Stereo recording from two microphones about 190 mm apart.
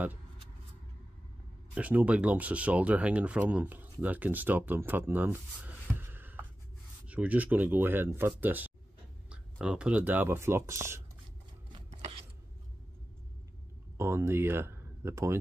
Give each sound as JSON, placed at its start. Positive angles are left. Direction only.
{"t": 1.8, "sound": "speech", "side_deg": -5}
{"t": 11.7, "sound": "chopping", "side_deg": -30}
{"t": 13.9, "sound": "speech", "side_deg": -15}